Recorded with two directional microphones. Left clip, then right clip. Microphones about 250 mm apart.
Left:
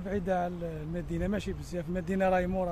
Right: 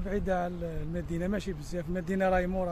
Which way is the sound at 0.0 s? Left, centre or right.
Centre.